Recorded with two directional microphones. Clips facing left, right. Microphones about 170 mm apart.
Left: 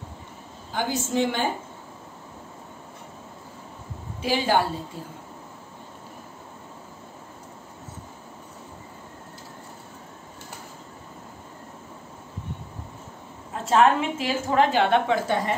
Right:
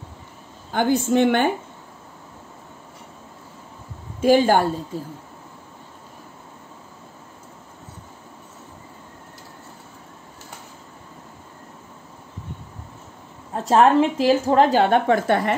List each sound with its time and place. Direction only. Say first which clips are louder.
0.7 s a woman's voice: right 8 dB; 55° right (ahead or behind)
4.2 s a woman's voice: right 7 dB; 50° right (ahead or behind)
13.5 s a woman's voice: right 3 dB; 35° right (ahead or behind); by 15.5 s 60° right (ahead or behind)